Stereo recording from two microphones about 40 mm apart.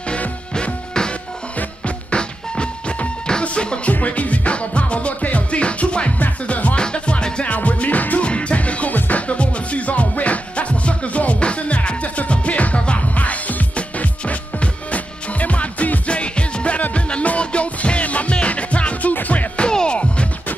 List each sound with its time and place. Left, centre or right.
1.0 s music: centre
6.8 s music: left
7.4 s music: left
8.2 s music: left
19.7 s music: centre